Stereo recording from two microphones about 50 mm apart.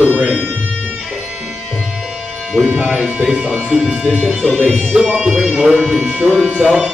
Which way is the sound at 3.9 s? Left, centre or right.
Right.